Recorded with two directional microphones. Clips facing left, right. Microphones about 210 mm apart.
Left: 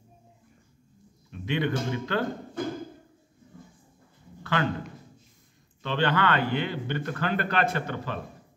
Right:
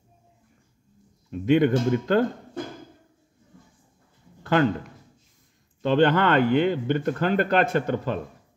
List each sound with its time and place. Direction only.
1.3 s speech: 45° right (ahead or behind)
4.4 s a sound: 45° right (ahead or behind)
5.8 s speech: 45° right (ahead or behind)